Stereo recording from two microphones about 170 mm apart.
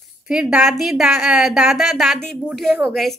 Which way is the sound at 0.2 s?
5° right (ahead or behind).